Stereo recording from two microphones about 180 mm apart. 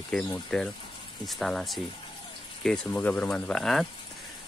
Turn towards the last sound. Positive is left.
turn(degrees=0)  # may be behind; listen again after turning